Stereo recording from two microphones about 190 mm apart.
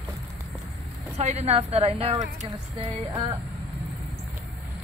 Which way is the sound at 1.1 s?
35° right (ahead or behind).